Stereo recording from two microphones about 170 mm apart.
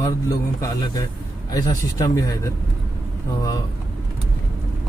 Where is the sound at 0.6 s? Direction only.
20° left (ahead or behind).